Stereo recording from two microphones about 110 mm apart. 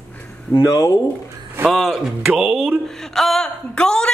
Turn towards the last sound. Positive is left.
turn(degrees=10)  # may be behind; listen again after turning